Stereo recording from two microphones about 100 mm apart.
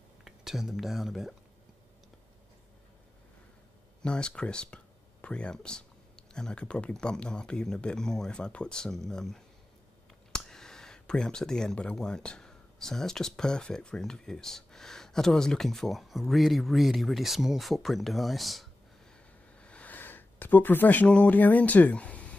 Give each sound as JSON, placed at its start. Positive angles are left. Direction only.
{"t": 0.2, "sound": "speech", "side_deg": -5}
{"t": 4.0, "sound": "speech", "side_deg": 10}
{"t": 19.6, "sound": "speech", "side_deg": 15}